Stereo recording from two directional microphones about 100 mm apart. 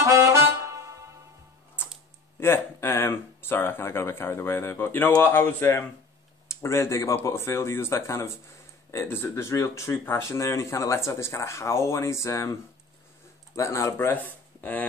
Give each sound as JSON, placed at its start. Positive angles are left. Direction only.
{"t": 0.0, "sound": "music", "side_deg": -30}
{"t": 2.4, "sound": "speech", "side_deg": 25}
{"t": 13.6, "sound": "speech", "side_deg": 30}